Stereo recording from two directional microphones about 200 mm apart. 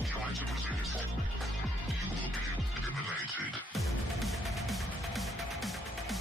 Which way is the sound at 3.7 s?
Centre (ahead or behind).